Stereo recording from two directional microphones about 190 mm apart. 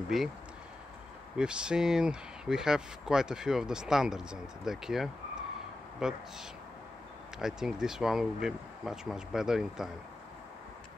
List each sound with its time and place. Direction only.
0.1 s speech: centre (ahead or behind)
1.3 s speech: 5° right (ahead or behind)
7.3 s speech: 5° right (ahead or behind)